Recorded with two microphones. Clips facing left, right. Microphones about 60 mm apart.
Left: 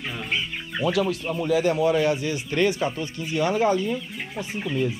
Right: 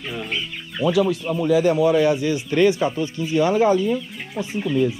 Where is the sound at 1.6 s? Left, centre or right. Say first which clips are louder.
Right 4 dB; right.